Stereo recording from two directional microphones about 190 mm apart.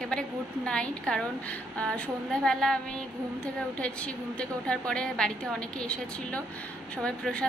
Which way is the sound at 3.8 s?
5° left (ahead or behind).